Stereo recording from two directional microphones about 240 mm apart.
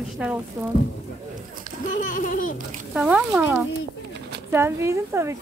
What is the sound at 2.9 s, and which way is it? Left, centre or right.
A woman's voice, centre.